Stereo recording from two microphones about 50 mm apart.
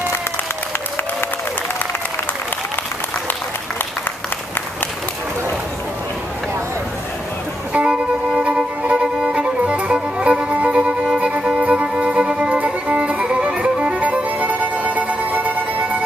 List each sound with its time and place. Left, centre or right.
7.7 s music: centre